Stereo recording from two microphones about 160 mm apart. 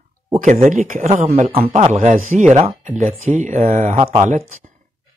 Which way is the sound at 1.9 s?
50° right (ahead or behind).